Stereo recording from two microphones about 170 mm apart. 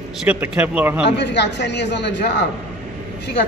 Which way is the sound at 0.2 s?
10° right (ahead or behind).